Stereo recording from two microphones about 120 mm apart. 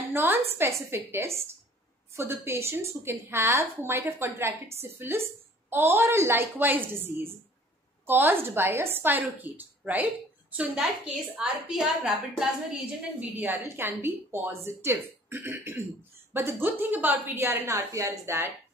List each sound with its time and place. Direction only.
0.1 s a sound: 20° right (ahead or behind)
0.6 s a woman's voice: 20° right (ahead or behind)
13.2 s a woman's voice: 15° right (ahead or behind)